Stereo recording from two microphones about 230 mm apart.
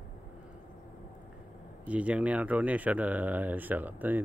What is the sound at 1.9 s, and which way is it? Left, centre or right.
Speech, centre.